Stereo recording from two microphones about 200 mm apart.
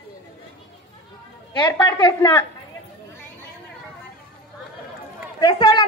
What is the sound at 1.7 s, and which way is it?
Speech, 20° left (ahead or behind).